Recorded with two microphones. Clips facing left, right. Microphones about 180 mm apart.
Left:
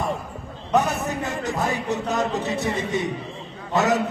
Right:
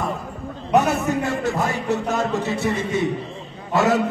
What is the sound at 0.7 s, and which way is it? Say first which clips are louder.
Speech: right 3 dB; 15° right (ahead or behind).